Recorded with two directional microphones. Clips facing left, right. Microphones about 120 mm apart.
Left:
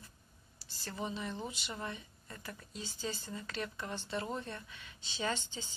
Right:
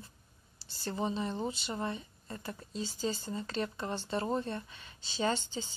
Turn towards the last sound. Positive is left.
turn(degrees=-35)  # may be behind; listen again after turning